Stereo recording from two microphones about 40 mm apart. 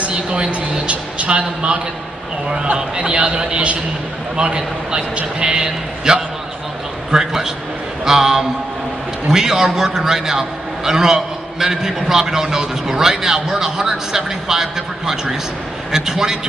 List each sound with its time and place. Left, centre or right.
0.0 s a man's voice: right
3.0 s a man's voice: right